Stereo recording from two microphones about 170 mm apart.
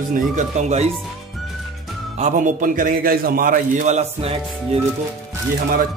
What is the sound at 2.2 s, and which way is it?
A man's voice, 50° right (ahead or behind).